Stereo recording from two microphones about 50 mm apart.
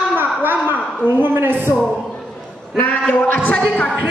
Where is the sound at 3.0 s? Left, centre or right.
Left.